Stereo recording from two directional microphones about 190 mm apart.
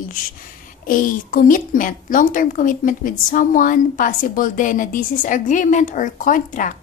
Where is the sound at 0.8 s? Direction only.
45° left (ahead or behind).